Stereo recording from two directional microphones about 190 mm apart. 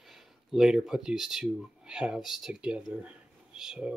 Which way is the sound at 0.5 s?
Centre (ahead or behind).